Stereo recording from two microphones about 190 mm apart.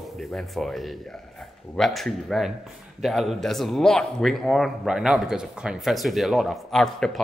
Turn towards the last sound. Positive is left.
turn(degrees=5)  # may be behind; listen again after turning